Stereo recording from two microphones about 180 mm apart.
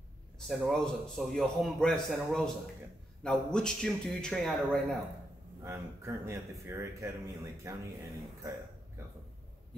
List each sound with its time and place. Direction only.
0.5 s a man's voice: centre (ahead or behind)
5.6 s a man's voice: 15° right (ahead or behind)